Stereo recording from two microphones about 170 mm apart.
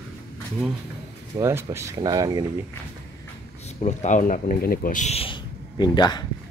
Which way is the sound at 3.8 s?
45° left (ahead or behind).